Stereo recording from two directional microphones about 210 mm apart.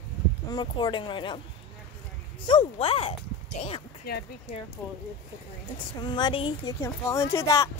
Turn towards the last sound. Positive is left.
turn(degrees=15)  # may be behind; listen again after turning